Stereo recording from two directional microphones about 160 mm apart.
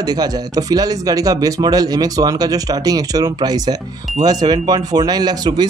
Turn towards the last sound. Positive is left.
turn(degrees=-25)  # may be behind; listen again after turning